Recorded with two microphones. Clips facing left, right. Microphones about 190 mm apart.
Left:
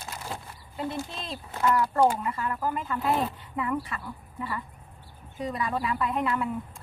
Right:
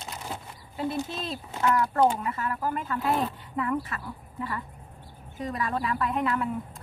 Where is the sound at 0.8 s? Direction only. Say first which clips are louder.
Right 3 dB; 5° right (ahead or behind).